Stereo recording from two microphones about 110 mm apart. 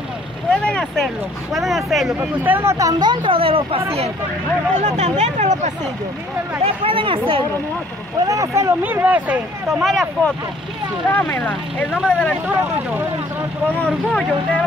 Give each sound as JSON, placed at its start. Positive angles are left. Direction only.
{"t": 0.5, "sound": "speech", "side_deg": 10}
{"t": 2.1, "sound": "speech", "side_deg": -15}
{"t": 2.9, "sound": "speech", "side_deg": -40}
{"t": 3.3, "sound": "speech", "side_deg": -60}
{"t": 4.7, "sound": "speech", "side_deg": -90}
{"t": 6.6, "sound": "speech", "side_deg": -60}
{"t": 8.3, "sound": "speech", "side_deg": -30}
{"t": 9.8, "sound": "speech", "side_deg": 0}
{"t": 11.1, "sound": "speech", "side_deg": 15}
{"t": 13.7, "sound": "speech", "side_deg": 10}